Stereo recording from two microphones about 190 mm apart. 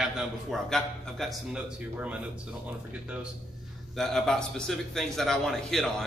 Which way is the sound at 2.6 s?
5° right (ahead or behind).